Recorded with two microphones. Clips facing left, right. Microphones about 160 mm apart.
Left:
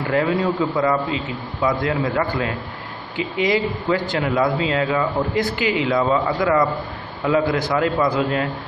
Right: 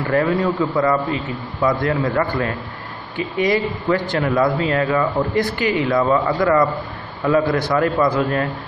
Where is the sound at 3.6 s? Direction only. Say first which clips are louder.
Right 1 dB; centre (ahead or behind).